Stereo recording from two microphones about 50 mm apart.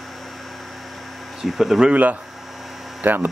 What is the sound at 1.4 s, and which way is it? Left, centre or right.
Speech, centre.